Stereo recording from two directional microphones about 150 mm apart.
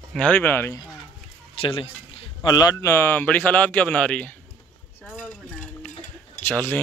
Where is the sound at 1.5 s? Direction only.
35° left (ahead or behind).